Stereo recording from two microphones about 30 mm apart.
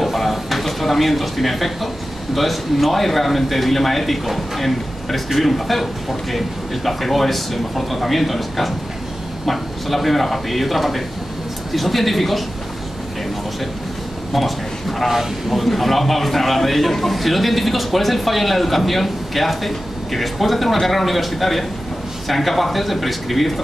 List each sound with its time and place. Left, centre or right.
0.0 s a sound: centre
2.3 s a man's voice: centre
14.3 s a man's voice: centre